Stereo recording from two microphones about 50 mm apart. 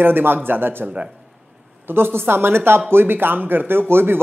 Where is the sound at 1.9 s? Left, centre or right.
Right.